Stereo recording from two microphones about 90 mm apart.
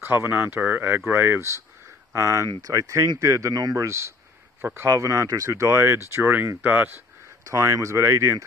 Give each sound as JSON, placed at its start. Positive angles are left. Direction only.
{"t": 0.0, "sound": "speech", "side_deg": -25}
{"t": 7.4, "sound": "speech", "side_deg": -35}